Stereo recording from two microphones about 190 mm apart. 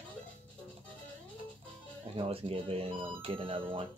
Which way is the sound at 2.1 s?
30° right (ahead or behind).